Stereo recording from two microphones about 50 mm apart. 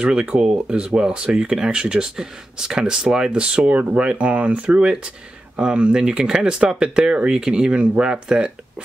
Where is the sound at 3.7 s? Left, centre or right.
Right.